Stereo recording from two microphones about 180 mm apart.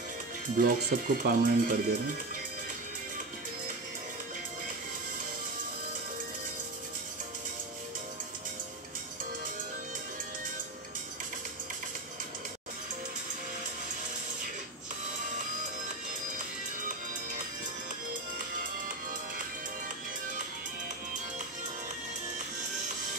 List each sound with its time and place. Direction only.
0.6 s speech: 55° right (ahead or behind)
15.0 s music: 45° right (ahead or behind)